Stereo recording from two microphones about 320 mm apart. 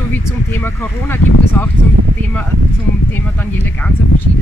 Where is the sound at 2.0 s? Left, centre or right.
Right.